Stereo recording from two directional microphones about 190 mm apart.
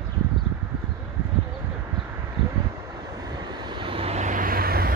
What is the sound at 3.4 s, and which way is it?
Vehicle, 25° right (ahead or behind).